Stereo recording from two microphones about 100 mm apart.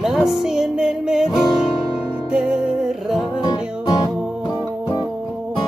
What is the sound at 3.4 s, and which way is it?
Music, 45° left (ahead or behind).